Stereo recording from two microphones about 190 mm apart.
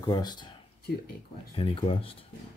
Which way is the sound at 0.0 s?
20° left (ahead or behind).